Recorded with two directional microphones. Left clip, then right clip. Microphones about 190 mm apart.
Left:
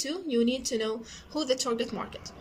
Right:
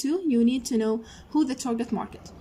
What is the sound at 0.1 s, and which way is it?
A woman's voice, 40° right (ahead or behind).